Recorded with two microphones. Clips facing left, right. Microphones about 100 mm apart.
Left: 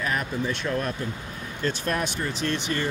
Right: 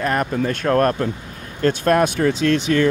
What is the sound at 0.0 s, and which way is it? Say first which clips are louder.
Speech: right 7 dB; 55° right (ahead or behind).